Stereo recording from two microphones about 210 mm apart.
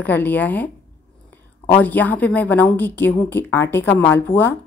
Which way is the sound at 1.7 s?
10° left (ahead or behind).